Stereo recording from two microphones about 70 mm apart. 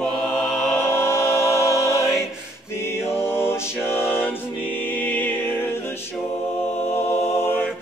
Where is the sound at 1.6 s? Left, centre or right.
Left.